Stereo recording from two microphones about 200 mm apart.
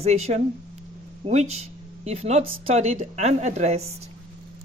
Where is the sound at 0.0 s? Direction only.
30° right (ahead or behind).